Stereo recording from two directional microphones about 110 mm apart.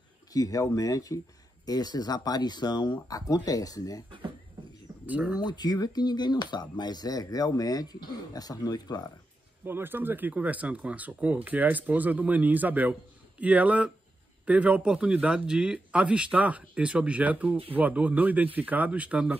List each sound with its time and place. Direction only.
0.3 s speech: 35° left (ahead or behind)
5.0 s speech: 15° right (ahead or behind)
5.4 s speech: 40° left (ahead or behind)
9.7 s speech: 20° right (ahead or behind)